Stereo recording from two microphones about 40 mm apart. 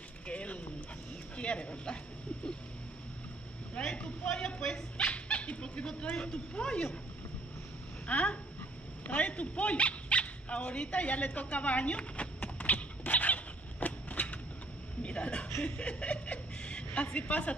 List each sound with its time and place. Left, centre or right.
0.3 s dog: left
1.3 s speech: left
3.9 s a sound: left
4.3 s speech: left
5.0 s dog: left
6.1 s speech: left
8.1 s a sound: left
9.0 s dog: left
15.0 s a sound: left
15.6 s speech: left